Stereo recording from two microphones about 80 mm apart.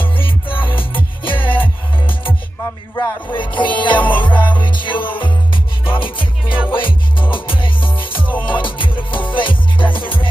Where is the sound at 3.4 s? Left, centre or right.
Left.